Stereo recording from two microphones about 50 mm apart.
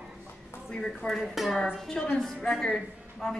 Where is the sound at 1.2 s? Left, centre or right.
Centre.